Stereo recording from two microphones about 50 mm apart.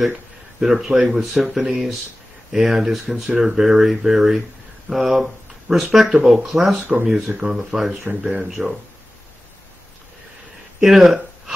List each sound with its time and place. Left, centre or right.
0.6 s speech: centre
8.2 s speech: centre
8.5 s speech: centre
10.8 s a sound: centre